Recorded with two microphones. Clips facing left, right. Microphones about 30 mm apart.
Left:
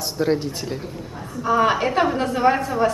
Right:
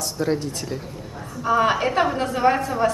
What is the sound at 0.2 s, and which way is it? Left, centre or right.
Speech, centre.